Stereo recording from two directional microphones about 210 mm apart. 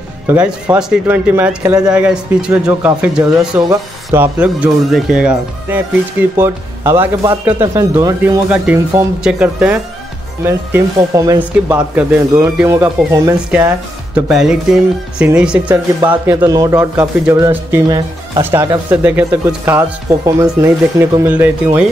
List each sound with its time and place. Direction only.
0.3 s speech: 5° right (ahead or behind)
16.3 s speech: 15° right (ahead or behind)